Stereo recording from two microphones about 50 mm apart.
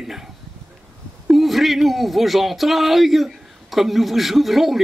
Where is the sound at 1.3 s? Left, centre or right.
Centre.